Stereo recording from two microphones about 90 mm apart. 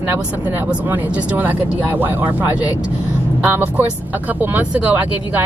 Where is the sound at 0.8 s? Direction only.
20° right (ahead or behind).